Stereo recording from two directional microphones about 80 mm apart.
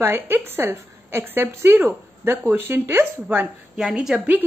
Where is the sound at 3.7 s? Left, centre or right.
Centre.